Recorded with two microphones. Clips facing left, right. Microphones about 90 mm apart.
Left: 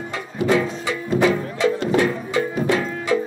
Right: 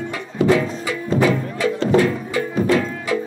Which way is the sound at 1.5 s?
25° left (ahead or behind).